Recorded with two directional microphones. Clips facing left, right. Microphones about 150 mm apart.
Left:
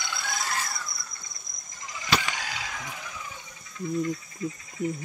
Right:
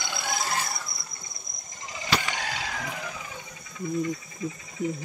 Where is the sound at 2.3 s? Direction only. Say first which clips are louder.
Right 3 dB; 30° right (ahead or behind).